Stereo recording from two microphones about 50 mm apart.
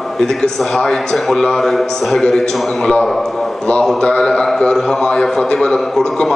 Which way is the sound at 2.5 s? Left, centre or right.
Centre.